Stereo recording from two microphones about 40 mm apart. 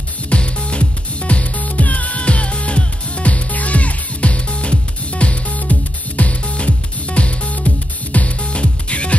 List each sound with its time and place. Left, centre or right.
0.3 s music: left